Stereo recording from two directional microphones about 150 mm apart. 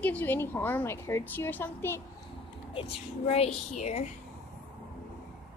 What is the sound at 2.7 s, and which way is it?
A woman's voice, 40° left (ahead or behind).